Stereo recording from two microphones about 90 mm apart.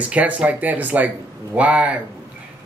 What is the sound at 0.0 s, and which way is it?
Speech, 15° right (ahead or behind).